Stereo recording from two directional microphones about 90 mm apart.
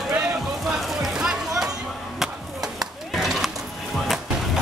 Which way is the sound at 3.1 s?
5° right (ahead or behind).